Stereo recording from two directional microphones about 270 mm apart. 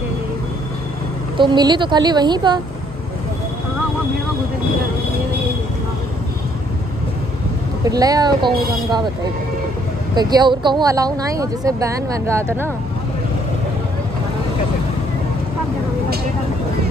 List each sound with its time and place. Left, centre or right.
1.4 s speech: centre
7.8 s speech: centre
10.1 s speech: centre